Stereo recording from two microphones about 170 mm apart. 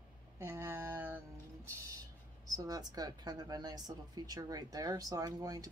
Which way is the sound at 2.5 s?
20° right (ahead or behind).